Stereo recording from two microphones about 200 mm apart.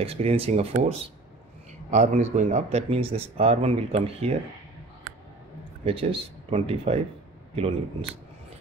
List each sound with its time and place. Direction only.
0.0 s speech: 30° right (ahead or behind)
5.9 s speech: 30° right (ahead or behind)